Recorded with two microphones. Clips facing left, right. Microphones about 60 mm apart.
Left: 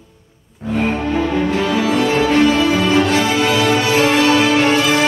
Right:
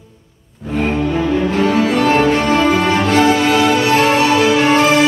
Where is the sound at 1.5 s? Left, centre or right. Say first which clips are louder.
Right 2 dB; right.